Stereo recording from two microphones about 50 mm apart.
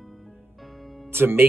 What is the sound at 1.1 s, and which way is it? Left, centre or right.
Speech, right.